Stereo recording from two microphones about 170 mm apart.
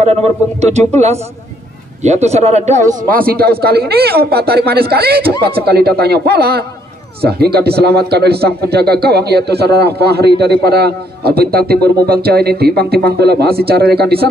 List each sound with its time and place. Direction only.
0.0 s a man's voice: 40° right (ahead or behind); by 14.2 s 70° right (ahead or behind)